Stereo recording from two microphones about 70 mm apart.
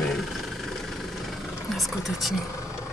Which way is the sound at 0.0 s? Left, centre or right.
Centre.